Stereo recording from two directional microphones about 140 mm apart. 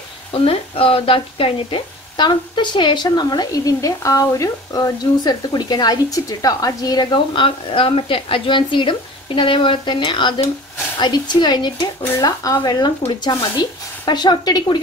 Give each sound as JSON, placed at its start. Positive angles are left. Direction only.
{"t": 0.3, "sound": "speech", "side_deg": 40}